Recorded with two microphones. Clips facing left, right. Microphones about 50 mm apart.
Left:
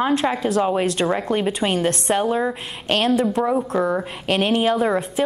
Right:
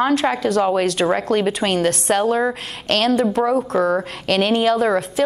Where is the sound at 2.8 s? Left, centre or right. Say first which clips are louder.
Right 2 dB; centre.